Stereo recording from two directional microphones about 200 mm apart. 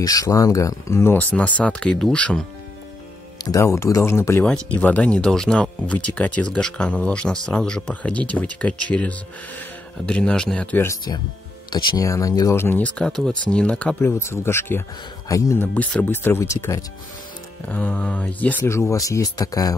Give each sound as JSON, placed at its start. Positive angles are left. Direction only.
{"t": 0.0, "sound": "speech", "side_deg": 15}
{"t": 3.5, "sound": "speech", "side_deg": 15}